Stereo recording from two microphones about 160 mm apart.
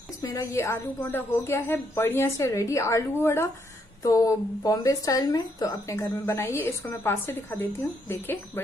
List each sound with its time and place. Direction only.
0.2 s speech: 20° left (ahead or behind)